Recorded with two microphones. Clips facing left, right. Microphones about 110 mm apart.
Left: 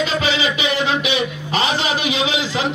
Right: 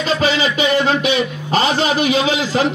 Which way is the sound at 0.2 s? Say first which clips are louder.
Right 4 dB; 40° right (ahead or behind).